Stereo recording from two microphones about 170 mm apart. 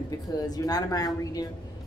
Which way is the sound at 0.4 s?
20° left (ahead or behind).